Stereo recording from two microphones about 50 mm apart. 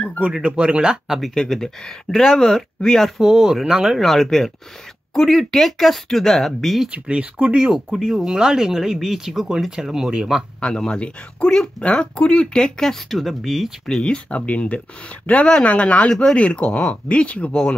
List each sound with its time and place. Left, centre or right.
0.4 s speech: right
1.2 s speech: centre
3.2 s speech: centre
4.0 s speech: centre
6.9 s speech: right
10.9 s speech: left
13.2 s speech: centre
13.8 s speech: centre
14.1 s speech: left
16.1 s speech: centre
16.3 s speech: left